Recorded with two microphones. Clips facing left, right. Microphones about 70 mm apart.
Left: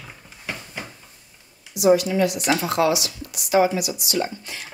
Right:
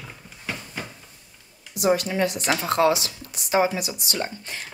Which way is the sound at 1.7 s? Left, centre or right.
Right.